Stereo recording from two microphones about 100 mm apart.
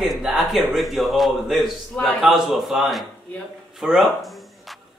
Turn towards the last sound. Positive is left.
turn(degrees=0)  # may be behind; listen again after turning